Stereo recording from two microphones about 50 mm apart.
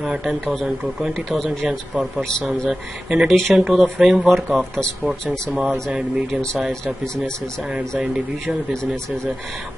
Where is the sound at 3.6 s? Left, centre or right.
Centre.